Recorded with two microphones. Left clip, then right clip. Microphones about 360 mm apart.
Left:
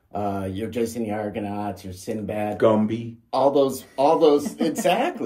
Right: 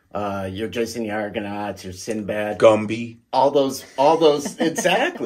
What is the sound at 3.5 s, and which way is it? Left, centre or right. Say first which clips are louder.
Speech: right 1 dB; centre.